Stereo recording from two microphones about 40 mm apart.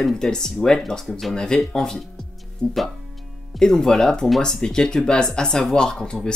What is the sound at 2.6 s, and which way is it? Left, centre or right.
Speech, left.